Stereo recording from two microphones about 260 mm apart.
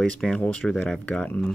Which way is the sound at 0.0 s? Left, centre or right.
Centre.